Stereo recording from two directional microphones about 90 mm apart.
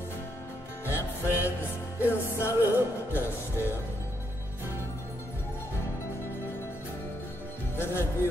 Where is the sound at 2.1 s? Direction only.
25° left (ahead or behind).